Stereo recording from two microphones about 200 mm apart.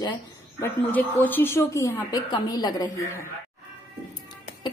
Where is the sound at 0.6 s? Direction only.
10° left (ahead or behind).